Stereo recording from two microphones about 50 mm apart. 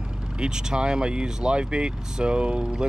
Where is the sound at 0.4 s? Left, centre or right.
Centre.